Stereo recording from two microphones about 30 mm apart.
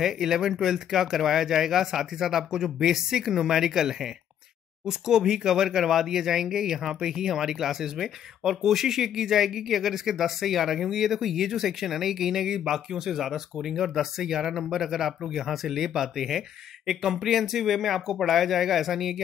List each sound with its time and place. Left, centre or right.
0.0 s speech: centre